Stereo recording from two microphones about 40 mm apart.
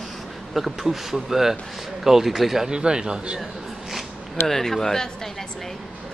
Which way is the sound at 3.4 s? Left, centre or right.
Centre.